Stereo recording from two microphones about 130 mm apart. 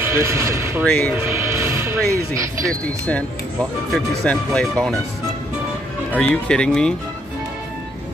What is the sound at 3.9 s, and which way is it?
Speech, 5° left (ahead or behind).